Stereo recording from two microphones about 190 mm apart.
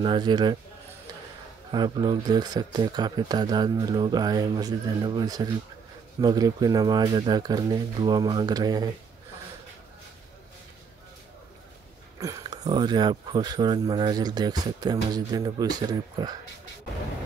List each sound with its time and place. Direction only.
0.0 s speech: 25° right (ahead or behind)
1.7 s speech: 20° right (ahead or behind)
12.2 s speech: 20° right (ahead or behind)